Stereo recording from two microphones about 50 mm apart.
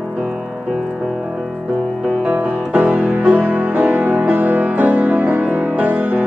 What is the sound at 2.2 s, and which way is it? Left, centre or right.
Music, right.